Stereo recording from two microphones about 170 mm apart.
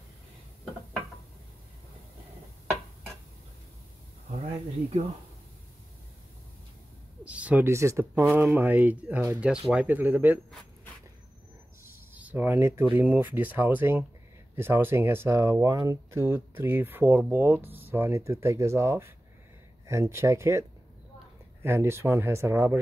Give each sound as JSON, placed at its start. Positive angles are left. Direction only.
{"t": 7.2, "sound": "speech", "side_deg": -10}
{"t": 12.1, "sound": "speech", "side_deg": -10}
{"t": 21.6, "sound": "speech", "side_deg": -15}